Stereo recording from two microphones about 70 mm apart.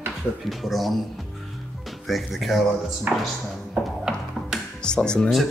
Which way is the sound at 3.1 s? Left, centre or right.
Right.